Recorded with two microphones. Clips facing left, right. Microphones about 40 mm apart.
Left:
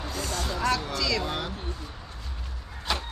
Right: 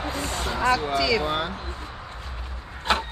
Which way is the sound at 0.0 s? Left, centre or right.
Right.